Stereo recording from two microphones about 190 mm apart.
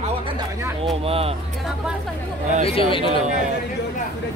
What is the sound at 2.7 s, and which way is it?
Speech, 30° left (ahead or behind).